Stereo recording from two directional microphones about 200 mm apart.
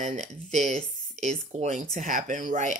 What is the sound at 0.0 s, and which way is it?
Speech, 35° right (ahead or behind).